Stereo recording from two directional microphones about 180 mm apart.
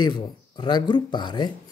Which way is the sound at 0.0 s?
25° left (ahead or behind).